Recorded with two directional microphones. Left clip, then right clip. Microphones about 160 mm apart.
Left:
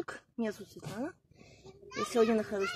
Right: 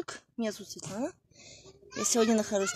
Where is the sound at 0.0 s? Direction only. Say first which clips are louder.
Right 1 dB; 20° right (ahead or behind).